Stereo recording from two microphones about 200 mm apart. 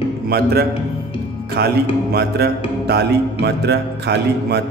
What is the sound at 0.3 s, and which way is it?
Speech, 50° right (ahead or behind).